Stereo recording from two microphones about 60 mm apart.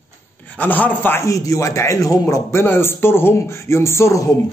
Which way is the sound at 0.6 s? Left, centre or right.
Left.